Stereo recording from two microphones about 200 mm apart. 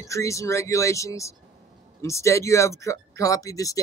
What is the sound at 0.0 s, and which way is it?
Speech, 15° left (ahead or behind).